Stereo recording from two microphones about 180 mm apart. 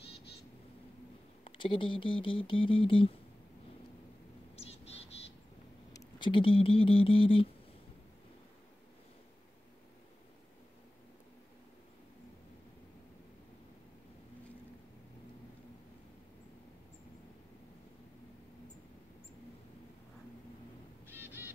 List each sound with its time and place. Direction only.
1.4 s speech: 25° left (ahead or behind)
4.6 s insect: 35° left (ahead or behind)
5.9 s speech: 25° left (ahead or behind)
21.1 s bird: 10° right (ahead or behind)